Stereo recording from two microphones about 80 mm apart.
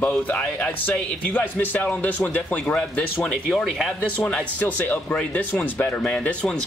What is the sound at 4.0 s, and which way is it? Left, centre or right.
Speech, centre.